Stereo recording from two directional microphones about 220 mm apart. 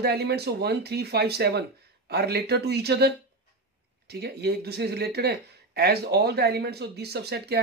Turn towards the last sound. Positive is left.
turn(degrees=-45)  # may be behind; listen again after turning